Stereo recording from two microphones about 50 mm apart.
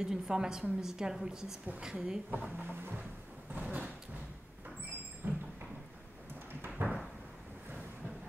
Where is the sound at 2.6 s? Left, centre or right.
Right.